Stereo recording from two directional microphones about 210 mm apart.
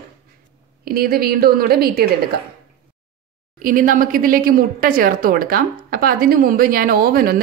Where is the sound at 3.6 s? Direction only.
40° right (ahead or behind).